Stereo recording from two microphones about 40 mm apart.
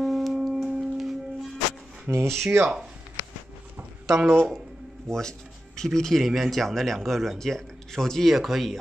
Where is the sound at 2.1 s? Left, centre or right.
Right.